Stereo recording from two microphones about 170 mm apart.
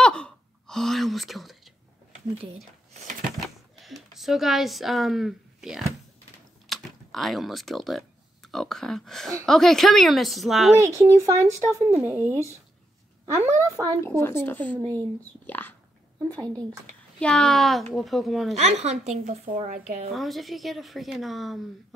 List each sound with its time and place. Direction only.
0.0 s gasp: 5° left (ahead or behind)
3.4 s speech: centre (ahead or behind)
10.8 s speech: 20° right (ahead or behind)
14.0 s speech: 15° left (ahead or behind)
14.8 s speech: 20° right (ahead or behind)
15.4 s speech: 10° left (ahead or behind)
16.3 s speech: 20° right (ahead or behind)
17.2 s speech: 5° left (ahead or behind)
18.5 s a woman's voice: 40° right (ahead or behind)
20.1 s speech: centre (ahead or behind)